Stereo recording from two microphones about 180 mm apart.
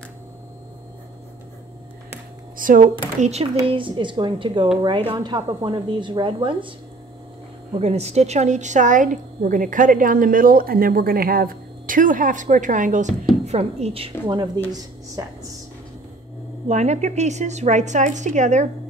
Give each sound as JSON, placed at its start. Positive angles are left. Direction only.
{"t": 2.5, "sound": "speech", "side_deg": -50}
{"t": 3.2, "sound": "a woman's voice", "side_deg": -35}
{"t": 7.8, "sound": "a woman's voice", "side_deg": -35}
{"t": 16.6, "sound": "a woman's voice", "side_deg": -40}